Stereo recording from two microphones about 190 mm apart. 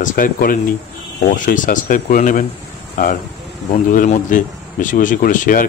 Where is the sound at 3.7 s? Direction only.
40° left (ahead or behind).